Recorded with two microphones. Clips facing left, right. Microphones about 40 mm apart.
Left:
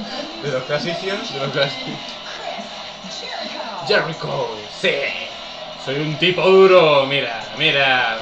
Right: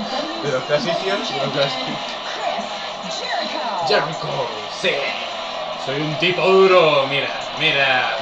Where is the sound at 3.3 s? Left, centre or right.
Right.